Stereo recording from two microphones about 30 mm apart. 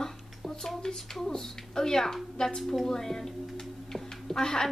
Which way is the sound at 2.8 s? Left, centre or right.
Centre.